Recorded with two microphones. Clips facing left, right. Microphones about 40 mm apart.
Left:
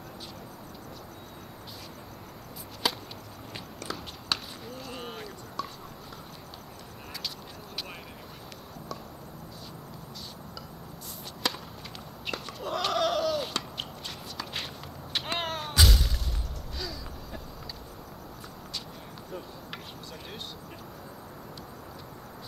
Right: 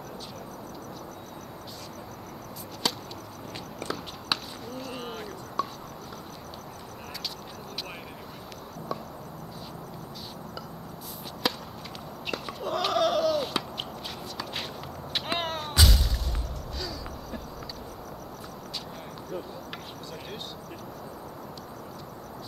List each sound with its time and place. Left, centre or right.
2.8 s chop: centre
3.8 s a sound: centre
4.7 s run: centre
5.6 s a sound: centre
11.4 s chop: centre
12.3 s goat: centre
14.3 s walk: centre
15.1 s music: centre
16.7 s a sound: centre